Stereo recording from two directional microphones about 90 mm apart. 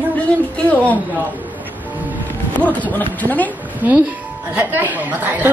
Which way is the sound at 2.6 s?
20° left (ahead or behind).